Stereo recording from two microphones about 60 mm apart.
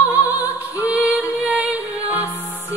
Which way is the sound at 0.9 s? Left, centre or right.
Right.